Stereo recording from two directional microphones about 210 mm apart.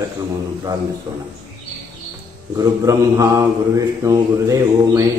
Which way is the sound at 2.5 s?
15° right (ahead or behind).